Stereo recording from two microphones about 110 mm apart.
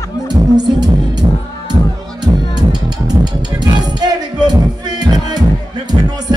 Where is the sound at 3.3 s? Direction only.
40° right (ahead or behind).